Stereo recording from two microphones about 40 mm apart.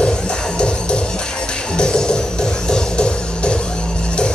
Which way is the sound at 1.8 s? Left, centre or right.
Left.